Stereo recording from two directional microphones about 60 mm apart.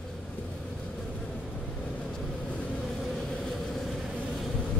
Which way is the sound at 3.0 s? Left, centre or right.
Centre.